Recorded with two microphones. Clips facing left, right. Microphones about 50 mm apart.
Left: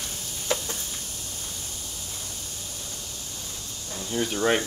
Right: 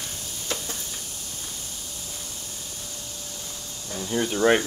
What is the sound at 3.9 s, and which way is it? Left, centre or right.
Speech, centre.